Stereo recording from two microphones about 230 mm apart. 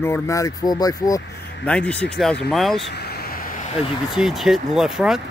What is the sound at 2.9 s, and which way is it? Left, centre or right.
Vehicle, left.